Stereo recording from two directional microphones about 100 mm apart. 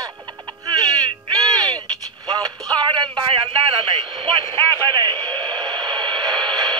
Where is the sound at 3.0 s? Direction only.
55° right (ahead or behind).